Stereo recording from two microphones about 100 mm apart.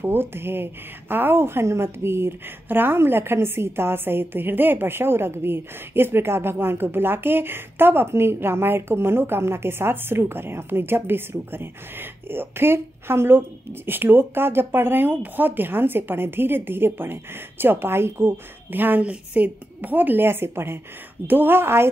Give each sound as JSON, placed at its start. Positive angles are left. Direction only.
{"t": 0.0, "sound": "a woman's voice", "side_deg": -25}